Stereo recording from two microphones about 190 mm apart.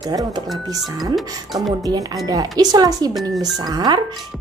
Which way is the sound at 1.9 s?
20° right (ahead or behind).